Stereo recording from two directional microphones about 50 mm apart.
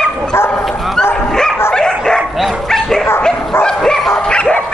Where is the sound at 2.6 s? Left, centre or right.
Centre.